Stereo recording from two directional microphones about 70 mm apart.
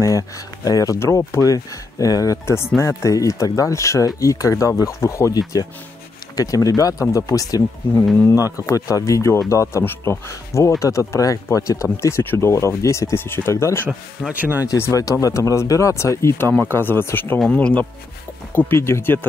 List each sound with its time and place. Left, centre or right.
0.7 s speech: left
0.9 s speech: left
1.4 s speech: left
2.4 s speech: left
6.3 s speech: left
14.3 s speech: right
14.8 s speech: left
18.6 s speech: left